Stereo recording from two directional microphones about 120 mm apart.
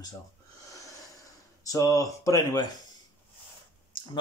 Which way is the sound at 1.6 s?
30° left (ahead or behind).